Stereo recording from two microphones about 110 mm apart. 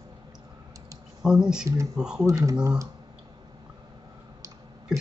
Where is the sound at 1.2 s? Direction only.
5° right (ahead or behind).